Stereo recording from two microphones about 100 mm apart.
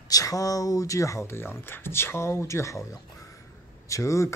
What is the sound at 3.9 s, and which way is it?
Speech, 30° left (ahead or behind).